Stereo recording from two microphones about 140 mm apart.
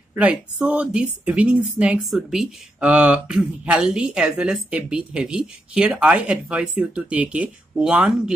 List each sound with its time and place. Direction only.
0.1 s a woman's voice: 10° right (ahead or behind)